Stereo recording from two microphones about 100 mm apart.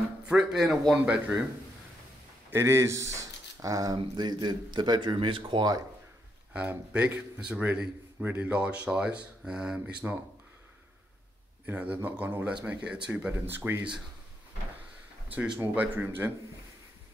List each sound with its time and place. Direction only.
0.3 s a man's voice: 5° right (ahead or behind)
2.5 s speech: 25° right (ahead or behind); by 5.7 s 55° right (ahead or behind)
6.5 s a man's voice: 15° right (ahead or behind)
11.6 s a man's voice: 15° right (ahead or behind)
15.6 s speech: 15° right (ahead or behind)